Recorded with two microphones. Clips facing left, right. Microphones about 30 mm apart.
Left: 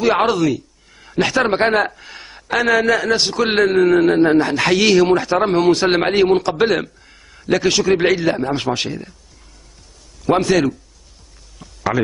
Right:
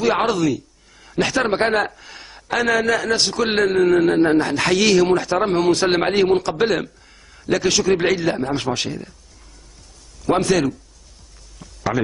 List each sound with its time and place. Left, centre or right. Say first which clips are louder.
0.0 s a man's voice: left 3 dB; centre
10.2 s a man's voice: left 2 dB; centre
11.6 s a sound: left 2 dB; centre